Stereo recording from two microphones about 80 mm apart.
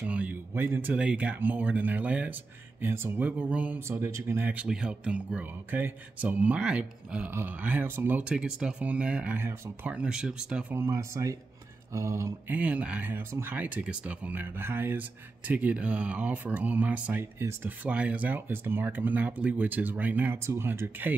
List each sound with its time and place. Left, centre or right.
0.0 s speech: centre
0.9 s speech: centre
2.8 s speech: right
3.8 s speech: right
4.5 s speech: centre
7.3 s speech: right
8.2 s speech: centre
10.9 s speech: right
12.4 s speech: centre
17.2 s speech: right
17.6 s speech: centre
20.3 s speech: right